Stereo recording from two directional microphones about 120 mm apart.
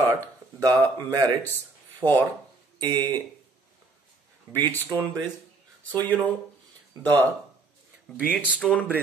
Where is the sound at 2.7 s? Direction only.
35° right (ahead or behind).